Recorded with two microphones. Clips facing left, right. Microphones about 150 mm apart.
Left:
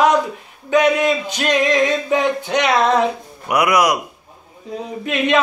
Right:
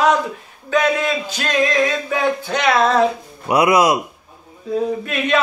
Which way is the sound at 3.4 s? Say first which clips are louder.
Right 2 dB; 25° right (ahead or behind).